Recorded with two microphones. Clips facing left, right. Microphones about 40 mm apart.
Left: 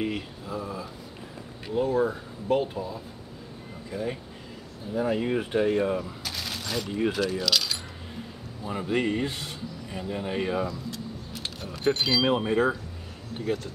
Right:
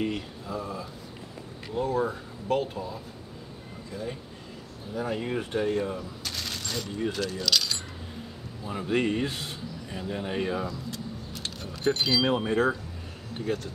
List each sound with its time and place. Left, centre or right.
0.0 s speech: centre
3.9 s speech: centre
6.2 s a sound: centre
7.1 s speech: centre
8.8 s speech: centre